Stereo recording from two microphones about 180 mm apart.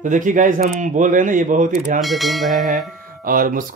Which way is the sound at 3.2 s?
50° right (ahead or behind).